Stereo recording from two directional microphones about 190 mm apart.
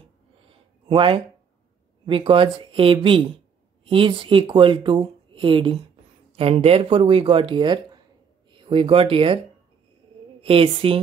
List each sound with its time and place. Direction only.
0.5 s a sound: 25° right (ahead or behind)
2.0 s speech: 25° right (ahead or behind)
10.4 s speech: 30° right (ahead or behind)